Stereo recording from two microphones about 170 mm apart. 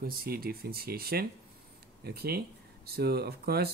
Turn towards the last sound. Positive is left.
turn(degrees=-65)  # may be behind; listen again after turning